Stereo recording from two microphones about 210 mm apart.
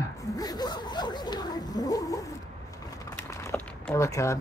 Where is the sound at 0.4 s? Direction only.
20° left (ahead or behind).